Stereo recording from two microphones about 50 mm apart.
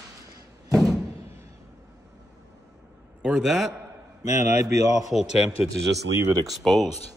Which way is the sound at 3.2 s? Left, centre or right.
Centre.